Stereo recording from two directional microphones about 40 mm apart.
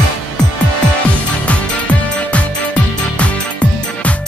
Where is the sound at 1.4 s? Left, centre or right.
Left.